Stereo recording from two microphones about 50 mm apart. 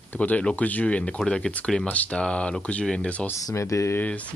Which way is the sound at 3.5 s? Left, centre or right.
Left.